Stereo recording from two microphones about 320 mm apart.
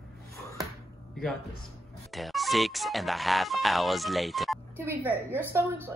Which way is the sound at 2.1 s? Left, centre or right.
Centre.